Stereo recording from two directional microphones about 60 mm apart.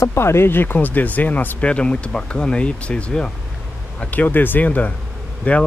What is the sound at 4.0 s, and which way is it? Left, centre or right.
Speech, left.